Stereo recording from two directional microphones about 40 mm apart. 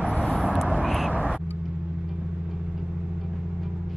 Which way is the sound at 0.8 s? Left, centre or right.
Centre.